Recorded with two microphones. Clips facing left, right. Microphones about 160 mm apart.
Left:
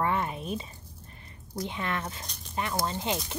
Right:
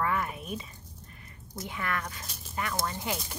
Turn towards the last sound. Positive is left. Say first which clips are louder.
# left 3 dB
turn(degrees=20)  # may be behind; listen again after turning